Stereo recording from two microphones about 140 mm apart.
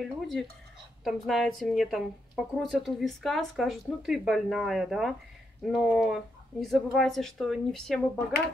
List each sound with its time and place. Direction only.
0.0 s a woman's voice: centre (ahead or behind)